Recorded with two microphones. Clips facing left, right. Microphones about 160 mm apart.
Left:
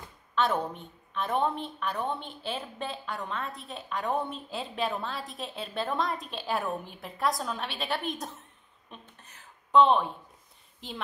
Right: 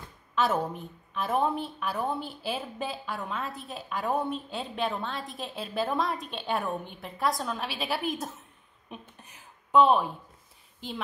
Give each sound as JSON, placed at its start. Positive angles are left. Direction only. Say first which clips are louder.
{"t": 0.4, "sound": "a woman's voice", "louder": "right 1 dB", "side_deg": -5}